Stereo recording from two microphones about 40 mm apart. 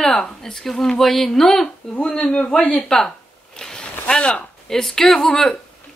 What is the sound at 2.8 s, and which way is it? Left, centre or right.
Speech, centre.